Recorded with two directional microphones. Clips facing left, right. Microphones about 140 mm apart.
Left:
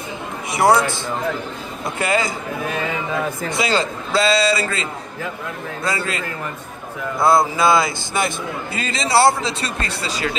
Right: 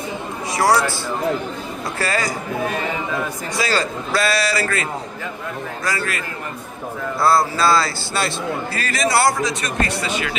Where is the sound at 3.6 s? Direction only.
20° left (ahead or behind).